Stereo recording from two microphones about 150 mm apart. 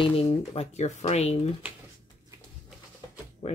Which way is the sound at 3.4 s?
50° left (ahead or behind).